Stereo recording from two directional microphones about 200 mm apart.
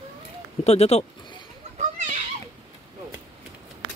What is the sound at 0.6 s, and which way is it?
Speech, 30° left (ahead or behind).